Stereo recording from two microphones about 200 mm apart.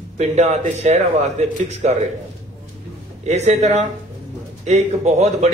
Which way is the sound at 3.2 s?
35° right (ahead or behind).